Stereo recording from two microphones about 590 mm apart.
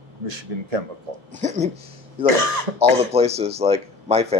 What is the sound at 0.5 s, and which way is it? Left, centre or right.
Speech, right.